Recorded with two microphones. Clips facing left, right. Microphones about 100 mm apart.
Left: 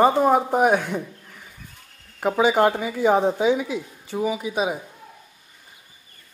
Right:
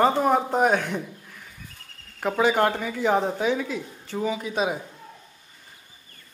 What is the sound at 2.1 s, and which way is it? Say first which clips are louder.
Speech: left 3 dB; 10° left (ahead or behind).